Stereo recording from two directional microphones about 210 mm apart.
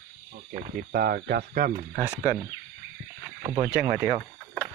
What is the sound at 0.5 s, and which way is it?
Speech, 40° right (ahead or behind).